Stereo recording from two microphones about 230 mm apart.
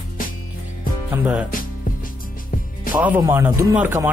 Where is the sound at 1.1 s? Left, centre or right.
Centre.